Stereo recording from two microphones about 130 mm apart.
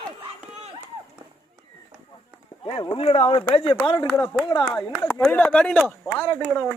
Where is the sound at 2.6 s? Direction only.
40° left (ahead or behind).